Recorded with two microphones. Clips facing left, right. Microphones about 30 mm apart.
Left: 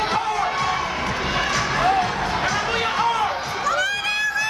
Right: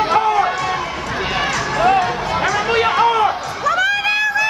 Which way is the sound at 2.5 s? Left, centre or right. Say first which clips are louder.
Right 6 dB; right.